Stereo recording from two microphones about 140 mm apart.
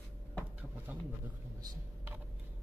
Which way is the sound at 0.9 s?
15° right (ahead or behind).